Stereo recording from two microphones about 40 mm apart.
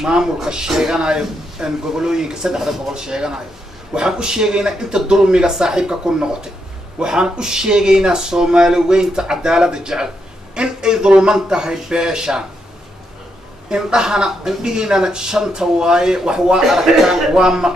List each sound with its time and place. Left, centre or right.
0.0 s speech: centre
13.7 s speech: centre